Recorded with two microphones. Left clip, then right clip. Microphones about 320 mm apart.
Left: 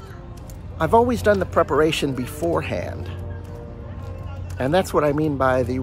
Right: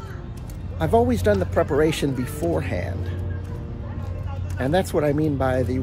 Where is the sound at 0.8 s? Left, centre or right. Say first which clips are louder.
Left 3 dB; centre.